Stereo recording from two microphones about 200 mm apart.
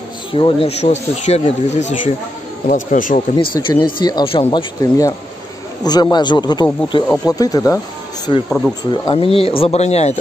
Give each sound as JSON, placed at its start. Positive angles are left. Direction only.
{"t": 0.3, "sound": "speech", "side_deg": 25}
{"t": 3.3, "sound": "speech", "side_deg": 20}
{"t": 8.5, "sound": "speech", "side_deg": 0}
{"t": 8.9, "sound": "speech", "side_deg": 25}